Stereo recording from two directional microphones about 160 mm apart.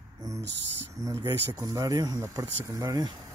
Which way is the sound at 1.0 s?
20° right (ahead or behind).